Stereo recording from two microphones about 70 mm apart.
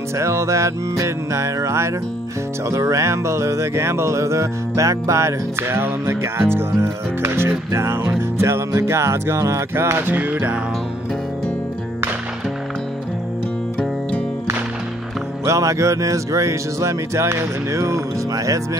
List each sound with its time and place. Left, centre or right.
0.2 s music: right
5.6 s music: right
15.4 s music: right